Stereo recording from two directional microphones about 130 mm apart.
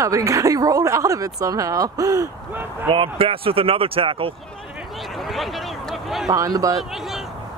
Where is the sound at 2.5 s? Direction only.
15° right (ahead or behind).